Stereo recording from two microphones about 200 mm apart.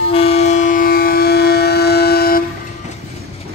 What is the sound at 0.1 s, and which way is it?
Train, 30° left (ahead or behind).